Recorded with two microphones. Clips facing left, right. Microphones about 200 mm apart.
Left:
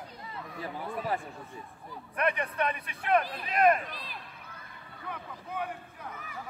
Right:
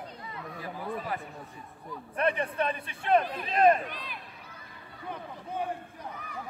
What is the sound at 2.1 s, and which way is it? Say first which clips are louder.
A man's voice: right 2 dB; 30° right (ahead or behind).